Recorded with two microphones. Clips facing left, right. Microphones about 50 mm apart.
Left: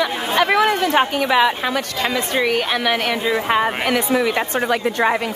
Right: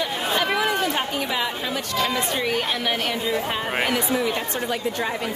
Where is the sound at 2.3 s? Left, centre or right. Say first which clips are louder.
Left 5 dB; left.